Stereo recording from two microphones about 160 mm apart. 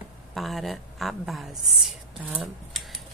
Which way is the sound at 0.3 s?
Centre (ahead or behind).